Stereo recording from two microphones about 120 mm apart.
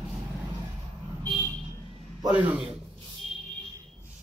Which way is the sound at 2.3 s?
10° right (ahead or behind).